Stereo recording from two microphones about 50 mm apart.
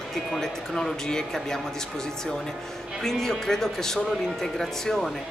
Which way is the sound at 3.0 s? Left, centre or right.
Centre.